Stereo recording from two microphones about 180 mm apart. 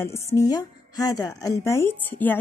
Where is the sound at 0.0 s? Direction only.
15° left (ahead or behind).